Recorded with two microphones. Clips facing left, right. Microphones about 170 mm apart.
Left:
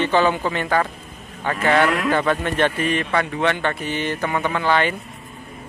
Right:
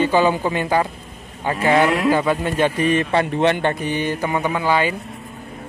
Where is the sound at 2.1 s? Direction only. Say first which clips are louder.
Right 1 dB; 10° right (ahead or behind).